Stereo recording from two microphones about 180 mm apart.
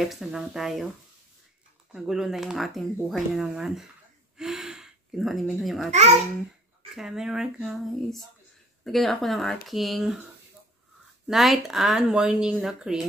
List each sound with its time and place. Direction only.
0.0 s speech: centre (ahead or behind)
1.9 s speech: 5° right (ahead or behind)
5.9 s a child's voice: 35° right (ahead or behind)
7.0 s speech: 5° right (ahead or behind)
11.2 s speech: centre (ahead or behind)